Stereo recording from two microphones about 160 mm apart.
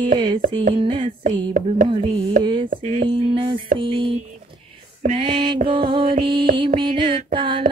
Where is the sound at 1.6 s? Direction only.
55° right (ahead or behind).